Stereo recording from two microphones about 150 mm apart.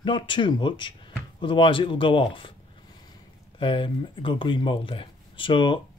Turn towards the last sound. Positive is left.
turn(degrees=35)  # may be behind; listen again after turning